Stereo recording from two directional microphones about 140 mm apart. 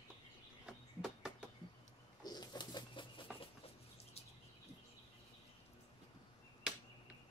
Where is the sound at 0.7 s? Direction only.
5° right (ahead or behind).